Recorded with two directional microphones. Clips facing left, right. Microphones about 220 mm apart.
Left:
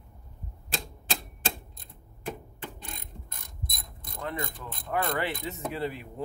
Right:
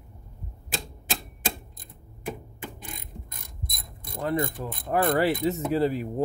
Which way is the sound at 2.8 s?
10° right (ahead or behind).